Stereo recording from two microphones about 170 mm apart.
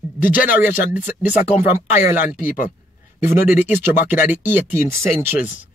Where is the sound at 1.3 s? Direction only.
45° left (ahead or behind).